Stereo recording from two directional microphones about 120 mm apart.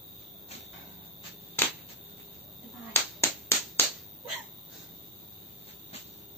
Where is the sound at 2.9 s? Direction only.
20° left (ahead or behind).